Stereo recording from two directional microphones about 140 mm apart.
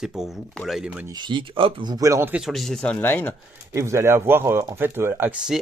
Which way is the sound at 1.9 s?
25° right (ahead or behind).